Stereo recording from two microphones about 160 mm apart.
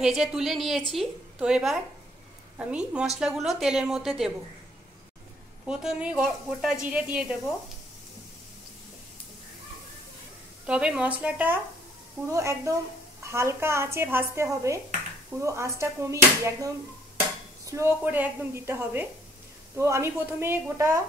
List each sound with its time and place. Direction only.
0.0 s a woman's voice: 5° right (ahead or behind)
5.7 s a woman's voice: 5° right (ahead or behind)
10.7 s a woman's voice: 5° right (ahead or behind)